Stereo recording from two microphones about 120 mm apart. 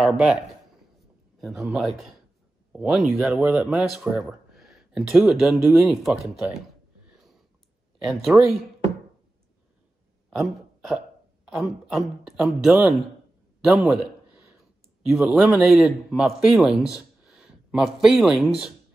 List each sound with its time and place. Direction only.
0.0 s speech: centre (ahead or behind)
1.4 s speech: centre (ahead or behind)
8.0 s speech: centre (ahead or behind)
10.3 s speech: centre (ahead or behind)
14.6 s a sound: centre (ahead or behind)
15.3 s speech: 5° right (ahead or behind)